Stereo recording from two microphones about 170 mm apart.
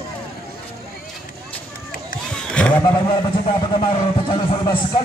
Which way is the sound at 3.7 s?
30° left (ahead or behind).